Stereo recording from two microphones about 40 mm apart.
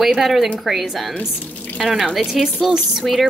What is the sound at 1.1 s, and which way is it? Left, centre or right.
Speech, left.